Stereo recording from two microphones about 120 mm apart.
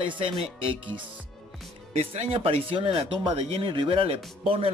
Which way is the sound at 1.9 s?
60° right (ahead or behind).